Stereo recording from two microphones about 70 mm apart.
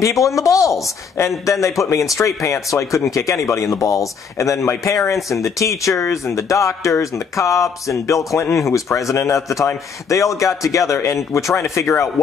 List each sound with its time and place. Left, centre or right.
0.0 s a man's voice: left